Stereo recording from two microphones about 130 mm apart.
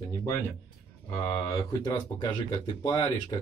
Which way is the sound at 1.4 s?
25° left (ahead or behind).